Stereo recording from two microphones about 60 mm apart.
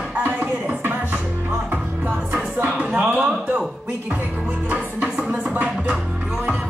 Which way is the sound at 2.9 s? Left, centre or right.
Right.